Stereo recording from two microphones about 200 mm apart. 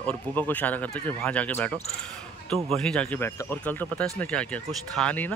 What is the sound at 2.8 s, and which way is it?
Speech, 5° left (ahead or behind).